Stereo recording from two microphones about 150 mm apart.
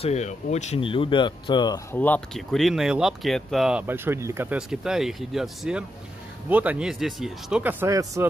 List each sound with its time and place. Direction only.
0.0 s speech: 50° left (ahead or behind)
0.8 s speech: 35° left (ahead or behind)
1.9 s speech: 10° left (ahead or behind)
3.8 s speech: 15° right (ahead or behind)
4.6 s speech: 5° right (ahead or behind)
7.6 s speech: 20° right (ahead or behind)